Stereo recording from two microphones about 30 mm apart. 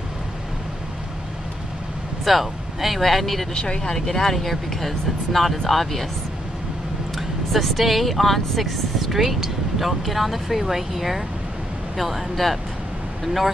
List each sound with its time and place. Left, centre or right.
2.2 s speech: centre
3.5 s speech: left
3.8 s speech: centre
7.2 s speech: centre